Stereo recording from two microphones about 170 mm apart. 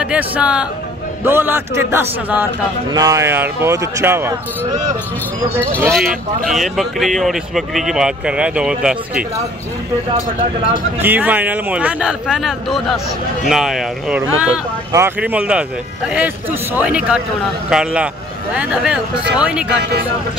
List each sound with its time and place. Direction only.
0.0 s speech: 10° right (ahead or behind)
5.9 s speech: centre (ahead or behind)
11.0 s speech: 10° right (ahead or behind)